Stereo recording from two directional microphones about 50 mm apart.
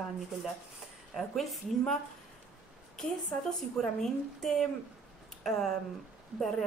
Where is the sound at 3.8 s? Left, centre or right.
Centre.